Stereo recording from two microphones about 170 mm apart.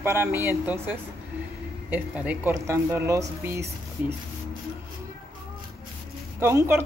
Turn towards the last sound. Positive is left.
turn(degrees=-15)  # may be behind; listen again after turning